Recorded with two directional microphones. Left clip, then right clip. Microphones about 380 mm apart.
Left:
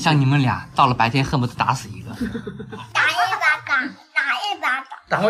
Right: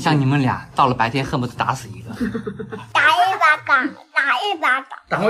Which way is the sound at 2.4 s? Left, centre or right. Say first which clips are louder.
Right 5 dB; right.